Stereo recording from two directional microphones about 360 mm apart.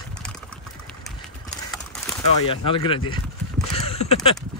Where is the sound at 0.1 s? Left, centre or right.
Centre.